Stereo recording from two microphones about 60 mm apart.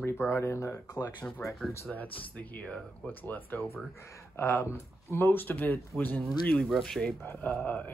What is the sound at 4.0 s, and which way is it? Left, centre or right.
Speech, left.